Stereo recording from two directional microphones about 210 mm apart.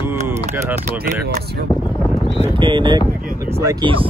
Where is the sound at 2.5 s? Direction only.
25° right (ahead or behind).